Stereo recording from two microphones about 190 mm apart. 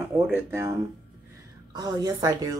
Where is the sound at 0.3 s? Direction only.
15° right (ahead or behind).